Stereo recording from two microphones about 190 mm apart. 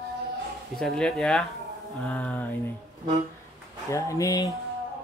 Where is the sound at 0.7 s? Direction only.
Centre (ahead or behind).